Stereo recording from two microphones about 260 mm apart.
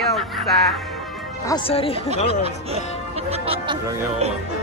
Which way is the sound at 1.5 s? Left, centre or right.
Centre.